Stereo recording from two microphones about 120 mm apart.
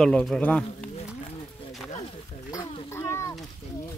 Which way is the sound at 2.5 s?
25° left (ahead or behind).